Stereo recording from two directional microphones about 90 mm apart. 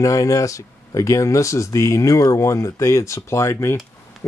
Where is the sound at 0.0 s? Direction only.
40° left (ahead or behind).